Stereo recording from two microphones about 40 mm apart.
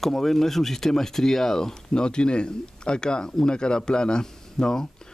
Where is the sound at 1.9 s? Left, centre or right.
Left.